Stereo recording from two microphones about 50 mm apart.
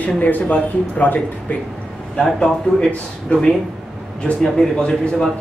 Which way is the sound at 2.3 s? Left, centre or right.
Centre.